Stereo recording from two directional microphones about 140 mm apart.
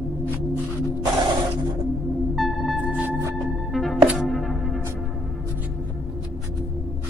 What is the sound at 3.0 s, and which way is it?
Music, 15° right (ahead or behind).